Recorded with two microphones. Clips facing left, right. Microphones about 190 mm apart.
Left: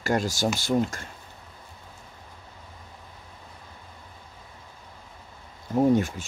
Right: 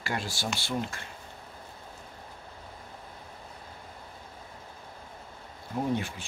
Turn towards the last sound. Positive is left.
turn(degrees=45)  # may be behind; listen again after turning